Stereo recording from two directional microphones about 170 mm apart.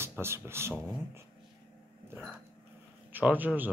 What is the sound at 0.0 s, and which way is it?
Speech, 15° right (ahead or behind).